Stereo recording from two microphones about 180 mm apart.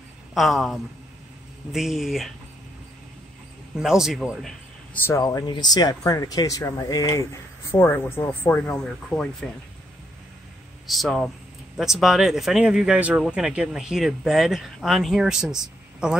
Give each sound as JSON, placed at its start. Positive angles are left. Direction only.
{"t": 0.3, "sound": "speech", "side_deg": 0}
{"t": 3.7, "sound": "speech", "side_deg": -5}
{"t": 5.0, "sound": "speech", "side_deg": 20}
{"t": 10.9, "sound": "speech", "side_deg": 0}